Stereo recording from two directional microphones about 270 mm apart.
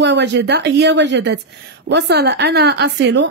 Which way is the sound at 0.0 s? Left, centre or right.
Right.